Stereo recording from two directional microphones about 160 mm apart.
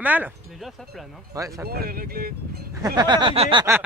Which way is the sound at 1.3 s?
20° right (ahead or behind).